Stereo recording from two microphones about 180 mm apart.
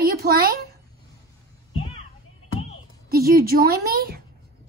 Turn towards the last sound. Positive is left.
turn(degrees=-60)  # may be behind; listen again after turning